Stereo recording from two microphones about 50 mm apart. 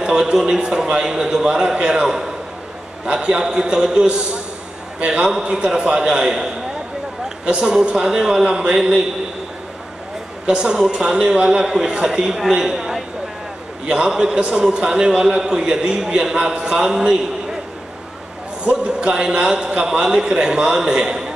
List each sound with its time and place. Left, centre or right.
0.0 s a man's voice: centre
10.4 s a man's voice: centre
18.6 s a man's voice: centre